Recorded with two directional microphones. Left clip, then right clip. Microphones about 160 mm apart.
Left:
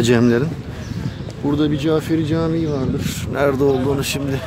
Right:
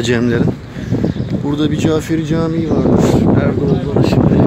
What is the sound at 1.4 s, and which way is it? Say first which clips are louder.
Speech: right 2 dB; 10° right (ahead or behind).